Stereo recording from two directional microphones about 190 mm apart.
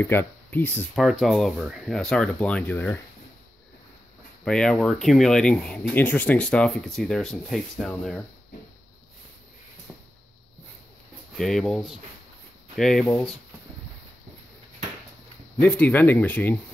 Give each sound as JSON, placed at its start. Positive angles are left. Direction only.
{"t": 0.0, "sound": "speech", "side_deg": 10}
{"t": 0.9, "sound": "speech", "side_deg": 0}
{"t": 4.5, "sound": "speech", "side_deg": 5}
{"t": 11.3, "sound": "speech", "side_deg": 0}
{"t": 15.6, "sound": "speech", "side_deg": 10}